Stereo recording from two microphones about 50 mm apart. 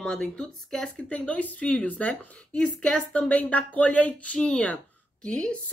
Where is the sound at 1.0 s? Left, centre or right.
Left.